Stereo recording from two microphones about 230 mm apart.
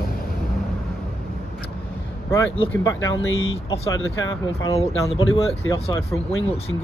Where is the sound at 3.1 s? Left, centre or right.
Left.